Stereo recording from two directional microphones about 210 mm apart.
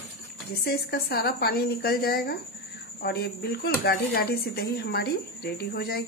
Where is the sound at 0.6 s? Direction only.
50° left (ahead or behind).